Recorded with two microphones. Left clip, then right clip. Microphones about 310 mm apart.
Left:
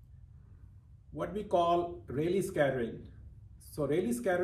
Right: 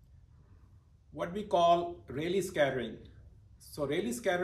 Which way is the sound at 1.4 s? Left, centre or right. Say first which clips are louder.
Right 2 dB; centre.